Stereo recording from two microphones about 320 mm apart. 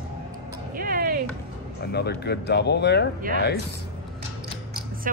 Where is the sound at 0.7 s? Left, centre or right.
Right.